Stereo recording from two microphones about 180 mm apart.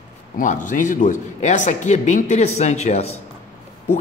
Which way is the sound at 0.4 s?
45° left (ahead or behind).